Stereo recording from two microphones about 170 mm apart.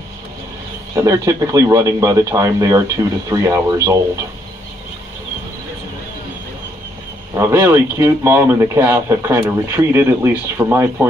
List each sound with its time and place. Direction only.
0.9 s speech: 20° right (ahead or behind)
7.3 s speech: 15° right (ahead or behind)